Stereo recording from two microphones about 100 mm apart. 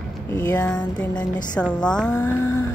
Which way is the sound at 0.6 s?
10° left (ahead or behind).